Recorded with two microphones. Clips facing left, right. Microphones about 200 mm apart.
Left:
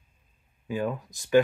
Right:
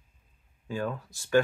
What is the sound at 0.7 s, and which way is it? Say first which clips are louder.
Speech: left 3 dB; 15° left (ahead or behind).